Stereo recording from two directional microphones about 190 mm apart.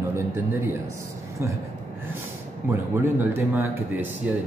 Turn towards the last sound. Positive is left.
turn(degrees=-10)  # may be behind; listen again after turning